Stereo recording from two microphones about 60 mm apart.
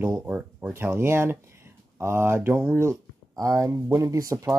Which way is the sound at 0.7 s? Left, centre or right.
Right.